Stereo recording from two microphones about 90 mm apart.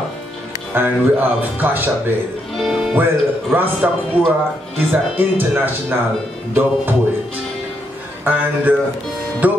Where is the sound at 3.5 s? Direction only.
25° right (ahead or behind).